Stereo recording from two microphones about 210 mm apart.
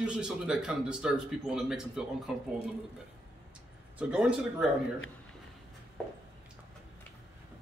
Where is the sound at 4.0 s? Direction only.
5° right (ahead or behind).